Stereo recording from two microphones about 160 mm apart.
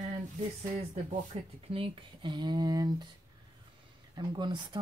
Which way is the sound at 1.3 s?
35° right (ahead or behind).